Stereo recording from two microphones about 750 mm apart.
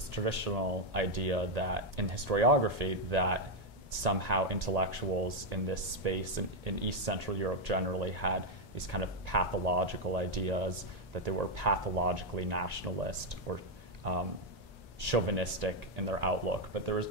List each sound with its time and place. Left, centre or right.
0.1 s speech: right